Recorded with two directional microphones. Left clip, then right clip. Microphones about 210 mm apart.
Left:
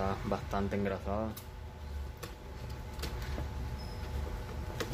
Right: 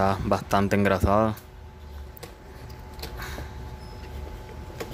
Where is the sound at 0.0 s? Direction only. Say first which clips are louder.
Right 11 dB; 40° right (ahead or behind).